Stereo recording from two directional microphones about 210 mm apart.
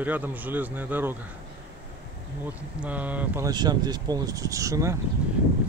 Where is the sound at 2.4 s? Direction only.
5° right (ahead or behind).